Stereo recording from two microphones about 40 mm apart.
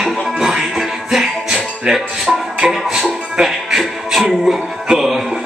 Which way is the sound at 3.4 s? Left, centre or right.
Centre.